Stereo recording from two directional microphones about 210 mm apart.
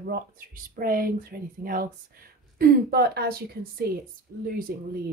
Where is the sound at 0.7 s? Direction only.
45° right (ahead or behind).